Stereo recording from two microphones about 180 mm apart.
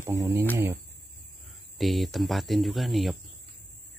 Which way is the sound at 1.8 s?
Centre (ahead or behind).